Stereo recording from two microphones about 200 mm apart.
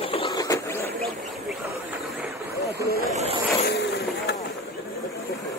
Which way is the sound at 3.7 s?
55° left (ahead or behind).